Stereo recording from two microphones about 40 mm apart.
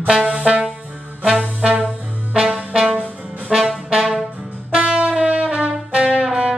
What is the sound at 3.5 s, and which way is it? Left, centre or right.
Brass instrument, centre.